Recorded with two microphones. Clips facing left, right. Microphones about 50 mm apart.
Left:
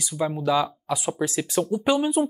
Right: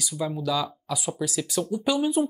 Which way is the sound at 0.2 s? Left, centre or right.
Left.